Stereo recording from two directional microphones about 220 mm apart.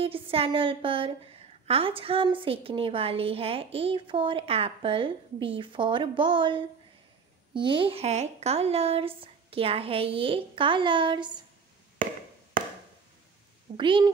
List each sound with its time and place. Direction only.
0.0 s a woman's voice: 25° right (ahead or behind)
13.7 s a woman's voice: 20° right (ahead or behind)